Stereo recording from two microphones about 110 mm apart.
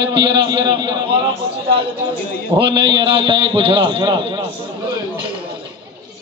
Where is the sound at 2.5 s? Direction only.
50° right (ahead or behind).